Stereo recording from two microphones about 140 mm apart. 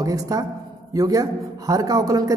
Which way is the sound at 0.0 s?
25° right (ahead or behind).